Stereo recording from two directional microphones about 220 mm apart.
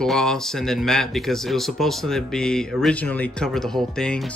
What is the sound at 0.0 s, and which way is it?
Speech, 5° left (ahead or behind).